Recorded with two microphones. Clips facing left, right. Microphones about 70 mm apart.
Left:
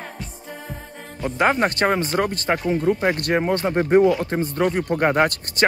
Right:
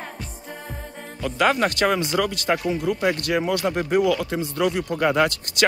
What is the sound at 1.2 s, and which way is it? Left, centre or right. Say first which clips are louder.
Speech: left 1 dB; left.